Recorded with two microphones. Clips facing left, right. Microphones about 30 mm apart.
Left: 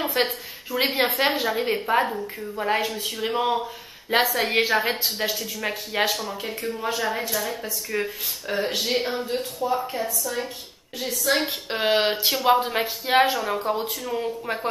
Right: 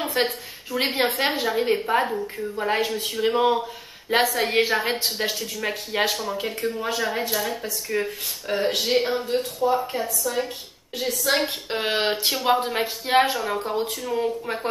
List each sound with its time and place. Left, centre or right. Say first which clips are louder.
0.0 s a woman's voice: even; centre
5.0 s speech: even; centre
6.3 s speech: right 3 dB; right
6.8 s a woman's voice: left 1 dB; centre
7.9 s speech: right 1 dB; centre
11.4 s speech: left 2 dB; centre